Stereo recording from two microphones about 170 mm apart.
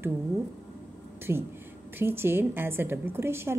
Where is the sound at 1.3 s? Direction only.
15° right (ahead or behind).